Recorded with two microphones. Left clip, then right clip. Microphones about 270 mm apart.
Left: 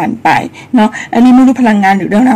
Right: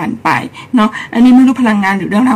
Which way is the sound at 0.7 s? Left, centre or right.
Right.